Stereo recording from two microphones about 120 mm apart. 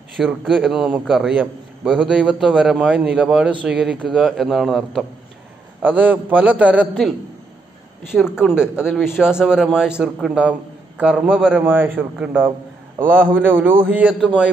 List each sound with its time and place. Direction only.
0.2 s a man's voice: centre (ahead or behind)
5.8 s a man's voice: 15° right (ahead or behind)
8.1 s a man's voice: 5° right (ahead or behind)